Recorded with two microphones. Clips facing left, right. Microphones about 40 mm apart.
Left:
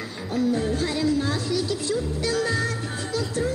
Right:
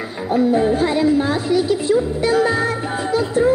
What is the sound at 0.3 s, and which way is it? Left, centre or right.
A woman's voice, right.